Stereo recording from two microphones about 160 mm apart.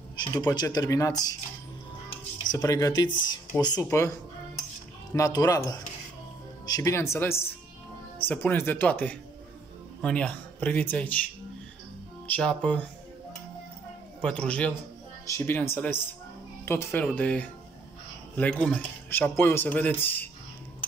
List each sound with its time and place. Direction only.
0.2 s speech: 25° left (ahead or behind)
2.5 s speech: 20° left (ahead or behind)
12.3 s speech: 10° left (ahead or behind)
14.2 s speech: 5° left (ahead or behind)